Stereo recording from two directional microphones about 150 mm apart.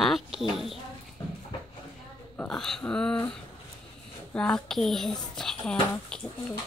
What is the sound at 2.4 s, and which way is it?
Speech, 5° left (ahead or behind).